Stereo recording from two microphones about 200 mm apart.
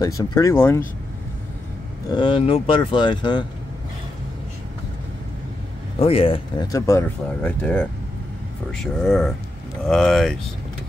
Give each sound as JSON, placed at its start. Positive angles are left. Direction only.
{"t": 0.0, "sound": "speech", "side_deg": 20}
{"t": 2.0, "sound": "speech", "side_deg": 25}
{"t": 5.9, "sound": "speech", "side_deg": 30}